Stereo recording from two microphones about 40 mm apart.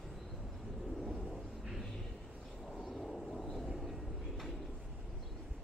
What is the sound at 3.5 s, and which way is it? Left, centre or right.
Vehicle, centre.